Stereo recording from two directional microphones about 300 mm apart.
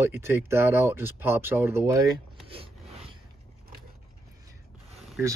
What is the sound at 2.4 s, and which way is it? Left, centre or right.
Rub, centre.